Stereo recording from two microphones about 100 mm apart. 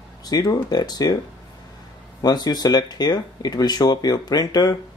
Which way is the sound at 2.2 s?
45° left (ahead or behind).